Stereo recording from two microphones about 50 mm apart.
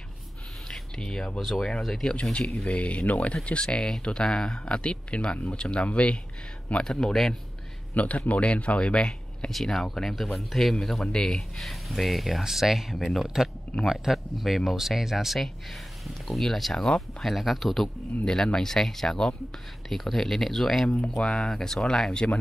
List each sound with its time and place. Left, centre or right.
0.7 s a sound: centre
1.4 s speech: centre
2.7 s speech: left
3.6 s speech: centre
7.9 s a man's voice: left
9.5 s speech: centre
18.2 s speech: centre